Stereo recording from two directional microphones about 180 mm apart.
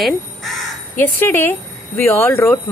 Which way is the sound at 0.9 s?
10° left (ahead or behind).